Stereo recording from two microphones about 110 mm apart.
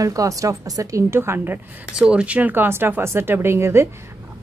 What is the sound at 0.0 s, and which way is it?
A woman's voice, 30° right (ahead or behind).